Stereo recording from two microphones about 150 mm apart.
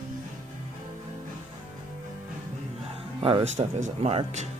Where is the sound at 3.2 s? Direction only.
35° right (ahead or behind).